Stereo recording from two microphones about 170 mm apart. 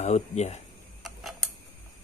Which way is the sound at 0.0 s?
40° left (ahead or behind).